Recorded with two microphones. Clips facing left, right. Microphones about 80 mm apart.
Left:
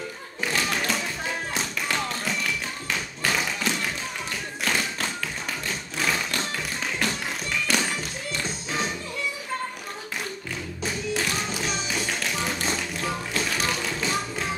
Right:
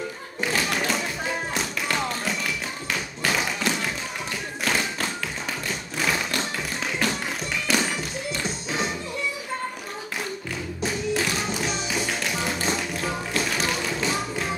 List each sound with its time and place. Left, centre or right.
0.4 s thump: centre
2.9 s tap: centre
10.8 s tap: centre